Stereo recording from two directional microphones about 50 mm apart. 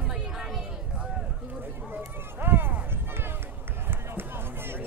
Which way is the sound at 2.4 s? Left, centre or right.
Right.